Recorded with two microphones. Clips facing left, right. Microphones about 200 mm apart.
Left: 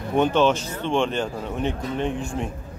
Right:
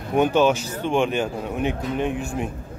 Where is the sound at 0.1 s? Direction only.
10° right (ahead or behind).